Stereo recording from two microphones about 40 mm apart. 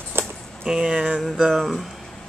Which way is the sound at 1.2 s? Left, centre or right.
Centre.